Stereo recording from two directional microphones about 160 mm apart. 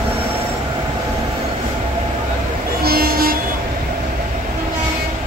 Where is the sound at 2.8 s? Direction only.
70° right (ahead or behind).